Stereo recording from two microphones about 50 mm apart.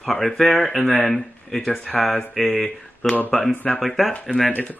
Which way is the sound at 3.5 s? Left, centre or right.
Left.